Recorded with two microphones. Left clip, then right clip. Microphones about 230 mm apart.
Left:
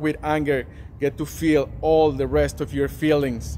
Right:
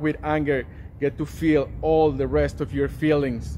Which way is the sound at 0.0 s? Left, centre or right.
Centre.